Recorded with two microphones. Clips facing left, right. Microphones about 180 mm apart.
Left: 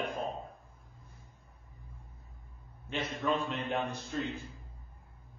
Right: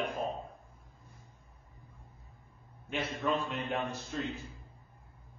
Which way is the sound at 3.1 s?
Centre (ahead or behind).